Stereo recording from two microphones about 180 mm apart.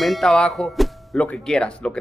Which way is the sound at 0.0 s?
Centre (ahead or behind).